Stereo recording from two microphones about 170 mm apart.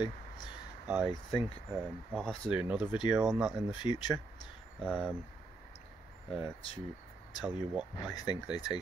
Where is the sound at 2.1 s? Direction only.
5° left (ahead or behind).